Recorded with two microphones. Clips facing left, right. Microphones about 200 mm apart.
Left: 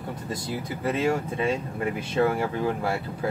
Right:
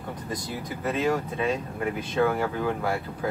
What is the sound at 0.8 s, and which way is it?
Speech, 30° left (ahead or behind).